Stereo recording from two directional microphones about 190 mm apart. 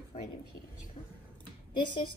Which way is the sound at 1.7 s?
25° left (ahead or behind).